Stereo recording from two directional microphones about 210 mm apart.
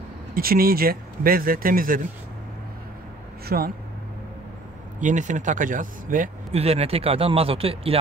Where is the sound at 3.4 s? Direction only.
45° right (ahead or behind).